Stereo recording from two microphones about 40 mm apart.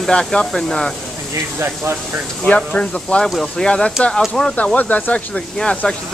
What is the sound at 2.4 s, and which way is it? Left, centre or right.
Speech, left.